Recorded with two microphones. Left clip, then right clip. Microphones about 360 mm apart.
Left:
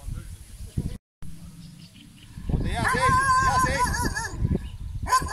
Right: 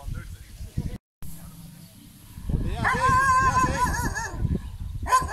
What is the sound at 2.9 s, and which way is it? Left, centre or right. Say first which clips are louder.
Music: right 1 dB; centre.